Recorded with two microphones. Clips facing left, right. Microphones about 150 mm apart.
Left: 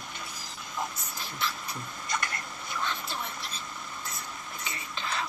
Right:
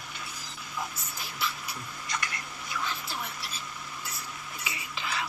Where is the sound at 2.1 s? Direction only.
50° left (ahead or behind).